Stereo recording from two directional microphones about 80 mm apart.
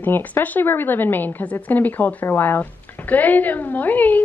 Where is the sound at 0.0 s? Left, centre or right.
Left.